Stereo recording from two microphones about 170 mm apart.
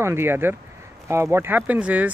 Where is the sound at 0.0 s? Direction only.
15° right (ahead or behind).